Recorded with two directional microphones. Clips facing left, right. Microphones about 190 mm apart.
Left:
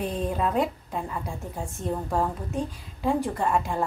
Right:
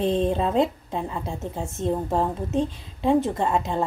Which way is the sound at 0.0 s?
25° right (ahead or behind).